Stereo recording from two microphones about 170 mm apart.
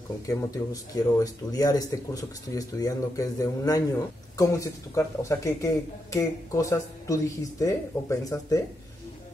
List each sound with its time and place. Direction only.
0.3 s speech: 20° left (ahead or behind)